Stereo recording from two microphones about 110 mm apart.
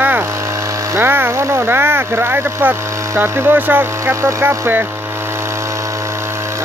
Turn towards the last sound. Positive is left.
turn(degrees=-25)  # may be behind; listen again after turning